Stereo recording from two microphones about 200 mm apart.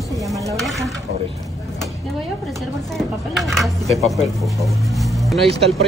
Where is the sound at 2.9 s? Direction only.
Centre (ahead or behind).